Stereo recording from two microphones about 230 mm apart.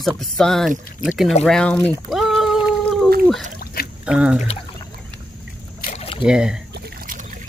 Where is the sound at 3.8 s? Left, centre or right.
Left.